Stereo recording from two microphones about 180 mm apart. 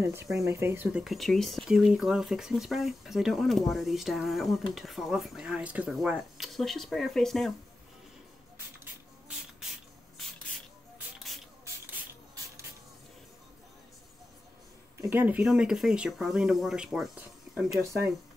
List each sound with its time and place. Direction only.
0.0 s speech: 15° right (ahead or behind)
1.0 s speech: centre (ahead or behind)
11.1 s spray: centre (ahead or behind)
11.6 s spray: 15° right (ahead or behind)
15.0 s speech: 10° right (ahead or behind)